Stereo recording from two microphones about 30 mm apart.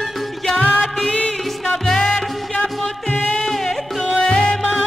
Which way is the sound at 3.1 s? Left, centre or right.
Left.